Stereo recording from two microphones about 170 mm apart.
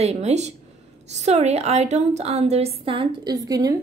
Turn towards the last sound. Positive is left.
turn(degrees=-20)  # may be behind; listen again after turning